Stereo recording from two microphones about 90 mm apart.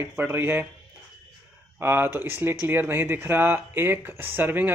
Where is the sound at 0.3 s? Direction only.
25° right (ahead or behind).